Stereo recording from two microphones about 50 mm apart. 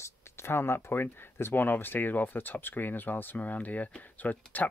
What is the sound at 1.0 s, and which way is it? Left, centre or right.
Speech, left.